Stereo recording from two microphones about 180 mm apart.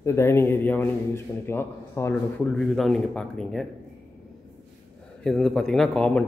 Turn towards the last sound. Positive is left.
turn(degrees=5)  # may be behind; listen again after turning